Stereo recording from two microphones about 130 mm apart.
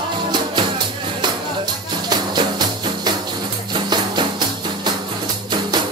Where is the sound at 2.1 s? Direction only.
35° right (ahead or behind).